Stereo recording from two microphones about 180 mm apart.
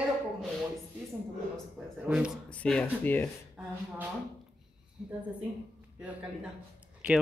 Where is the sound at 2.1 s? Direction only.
5° right (ahead or behind).